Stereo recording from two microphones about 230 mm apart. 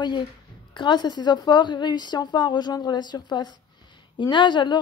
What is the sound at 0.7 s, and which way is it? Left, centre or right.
Speech, centre.